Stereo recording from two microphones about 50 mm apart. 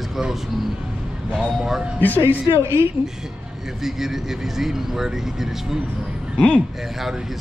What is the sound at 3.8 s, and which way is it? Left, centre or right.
Speech, centre.